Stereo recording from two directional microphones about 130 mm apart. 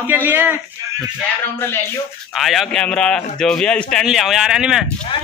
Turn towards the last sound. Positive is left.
turn(degrees=-5)  # may be behind; listen again after turning